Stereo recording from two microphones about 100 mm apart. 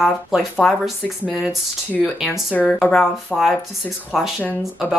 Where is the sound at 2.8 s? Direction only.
Centre (ahead or behind).